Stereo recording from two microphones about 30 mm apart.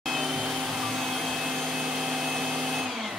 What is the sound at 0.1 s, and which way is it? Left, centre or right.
Vacuum cleaner, centre.